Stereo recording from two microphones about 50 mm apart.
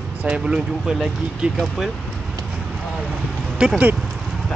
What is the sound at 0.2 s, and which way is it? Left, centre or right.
Speech, centre.